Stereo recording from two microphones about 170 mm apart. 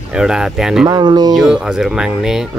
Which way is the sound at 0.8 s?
25° right (ahead or behind).